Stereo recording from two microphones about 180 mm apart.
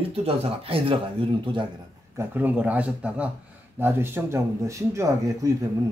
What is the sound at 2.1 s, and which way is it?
Speech, 10° right (ahead or behind).